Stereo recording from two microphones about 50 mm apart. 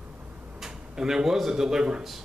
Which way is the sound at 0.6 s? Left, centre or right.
Centre.